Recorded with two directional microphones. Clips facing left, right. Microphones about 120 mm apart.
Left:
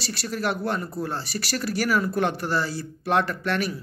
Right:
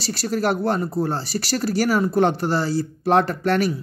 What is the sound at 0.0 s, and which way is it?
Speech, 35° right (ahead or behind).